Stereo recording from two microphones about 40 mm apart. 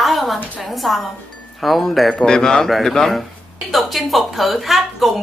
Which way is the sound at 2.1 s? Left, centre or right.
Centre.